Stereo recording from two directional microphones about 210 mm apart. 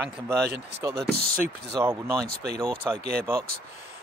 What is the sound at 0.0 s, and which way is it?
Speech, 10° right (ahead or behind).